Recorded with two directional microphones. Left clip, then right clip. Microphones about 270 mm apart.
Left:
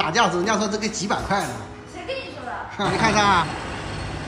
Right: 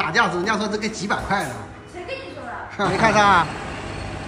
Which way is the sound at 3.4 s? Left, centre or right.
Right.